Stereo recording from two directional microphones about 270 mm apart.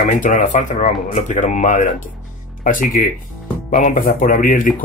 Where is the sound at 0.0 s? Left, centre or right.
Left.